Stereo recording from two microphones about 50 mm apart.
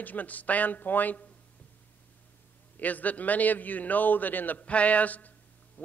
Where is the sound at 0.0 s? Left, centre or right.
Left.